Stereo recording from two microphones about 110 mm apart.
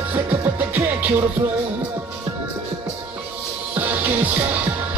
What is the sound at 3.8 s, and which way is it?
Music, 15° right (ahead or behind).